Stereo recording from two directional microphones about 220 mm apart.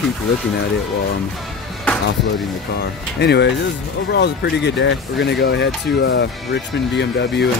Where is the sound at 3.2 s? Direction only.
50° left (ahead or behind).